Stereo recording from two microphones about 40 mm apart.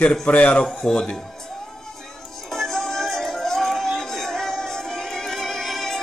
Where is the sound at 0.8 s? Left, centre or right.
Centre.